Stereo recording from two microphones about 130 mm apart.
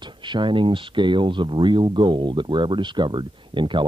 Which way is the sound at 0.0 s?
35° right (ahead or behind).